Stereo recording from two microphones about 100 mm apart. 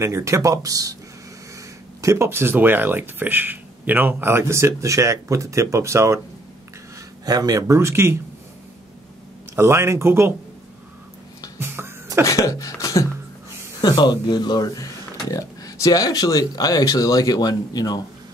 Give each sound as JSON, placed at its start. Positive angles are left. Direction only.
{"t": 0.0, "sound": "speech", "side_deg": -30}
{"t": 2.0, "sound": "speech", "side_deg": -30}
{"t": 7.2, "sound": "speech", "side_deg": -40}
{"t": 9.6, "sound": "speech", "side_deg": -30}
{"t": 11.6, "sound": "cough", "side_deg": -25}
{"t": 12.3, "sound": "a sound", "side_deg": 35}
{"t": 13.7, "sound": "speech", "side_deg": 45}